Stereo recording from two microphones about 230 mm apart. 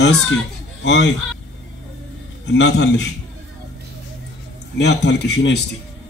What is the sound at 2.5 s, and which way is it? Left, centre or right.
Speech, left.